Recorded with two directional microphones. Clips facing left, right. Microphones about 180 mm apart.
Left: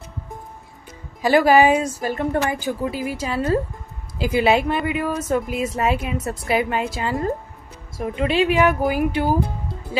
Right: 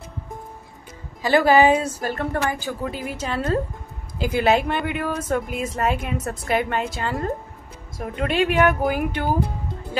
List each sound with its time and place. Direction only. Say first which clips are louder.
1.3 s a woman's voice: left 1 dB; 10° left (ahead or behind)
2.9 s a woman's voice: left 3 dB; 5° left (ahead or behind)